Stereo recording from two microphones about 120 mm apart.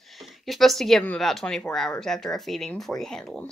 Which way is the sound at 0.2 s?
Centre (ahead or behind).